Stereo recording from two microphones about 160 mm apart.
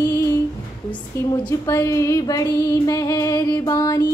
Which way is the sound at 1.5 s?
20° left (ahead or behind).